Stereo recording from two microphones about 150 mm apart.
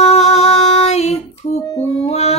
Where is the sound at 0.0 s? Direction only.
45° left (ahead or behind).